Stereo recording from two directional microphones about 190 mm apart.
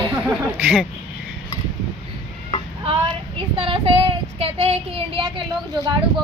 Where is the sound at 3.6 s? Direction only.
30° right (ahead or behind).